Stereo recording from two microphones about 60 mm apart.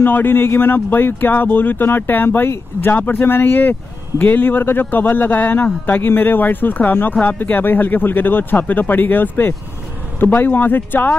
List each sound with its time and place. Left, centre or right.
0.0 s speech: left